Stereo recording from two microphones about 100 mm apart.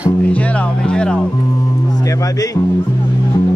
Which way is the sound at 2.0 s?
35° left (ahead or behind).